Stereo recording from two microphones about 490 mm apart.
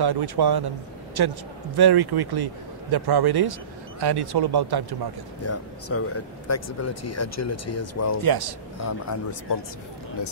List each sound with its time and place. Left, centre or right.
0.0 s a man's voice: right
5.4 s speech: left
8.2 s a man's voice: right
8.7 s speech: left